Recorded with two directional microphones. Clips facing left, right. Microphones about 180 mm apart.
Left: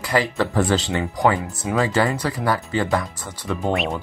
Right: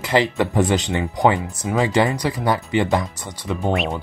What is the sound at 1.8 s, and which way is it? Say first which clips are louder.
Speech: right 2 dB; 20° right (ahead or behind).